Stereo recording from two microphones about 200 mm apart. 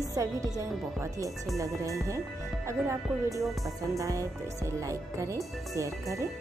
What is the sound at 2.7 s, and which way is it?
Speech, 15° right (ahead or behind).